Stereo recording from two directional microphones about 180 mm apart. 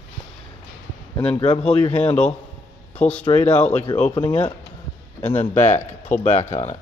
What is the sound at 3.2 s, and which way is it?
Speech, 35° left (ahead or behind).